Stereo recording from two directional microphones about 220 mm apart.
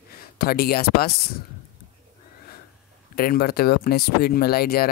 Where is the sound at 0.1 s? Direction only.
45° left (ahead or behind).